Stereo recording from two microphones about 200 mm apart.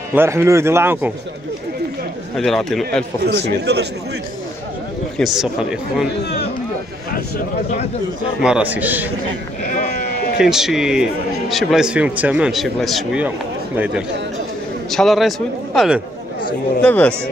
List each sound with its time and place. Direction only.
0.1 s speech: 10° right (ahead or behind)
2.3 s a man's voice: centre (ahead or behind)
3.3 s speech: 55° right (ahead or behind)
5.1 s a man's voice: centre (ahead or behind)
6.2 s speech: 55° left (ahead or behind)
8.4 s speech: 5° right (ahead or behind)
9.6 s sheep: 40° left (ahead or behind)
10.4 s a man's voice: centre (ahead or behind)
14.9 s a man's voice: centre (ahead or behind)